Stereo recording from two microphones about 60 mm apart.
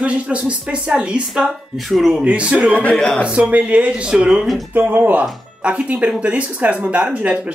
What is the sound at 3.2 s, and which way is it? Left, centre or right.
Speech, right.